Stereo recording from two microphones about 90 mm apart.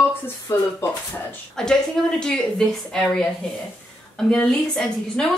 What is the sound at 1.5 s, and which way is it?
A woman's voice, 5° left (ahead or behind).